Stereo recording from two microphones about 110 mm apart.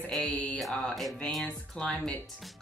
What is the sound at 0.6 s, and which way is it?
Speech, centre (ahead or behind).